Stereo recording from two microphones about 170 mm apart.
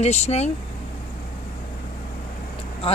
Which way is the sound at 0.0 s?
40° left (ahead or behind).